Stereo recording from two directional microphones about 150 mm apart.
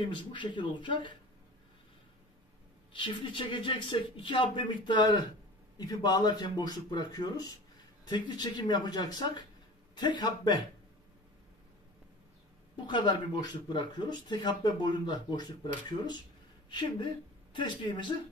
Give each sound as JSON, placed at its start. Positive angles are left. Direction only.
{"t": 0.0, "sound": "speech", "side_deg": 30}
{"t": 2.9, "sound": "speech", "side_deg": 35}
{"t": 12.7, "sound": "speech", "side_deg": 30}